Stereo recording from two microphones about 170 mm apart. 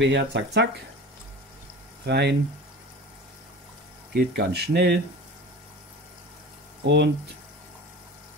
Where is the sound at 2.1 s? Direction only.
90° right.